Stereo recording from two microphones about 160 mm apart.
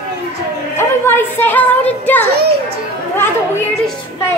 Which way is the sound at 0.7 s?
15° left (ahead or behind).